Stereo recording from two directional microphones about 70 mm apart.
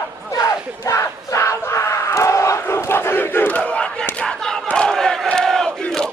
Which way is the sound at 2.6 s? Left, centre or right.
Left.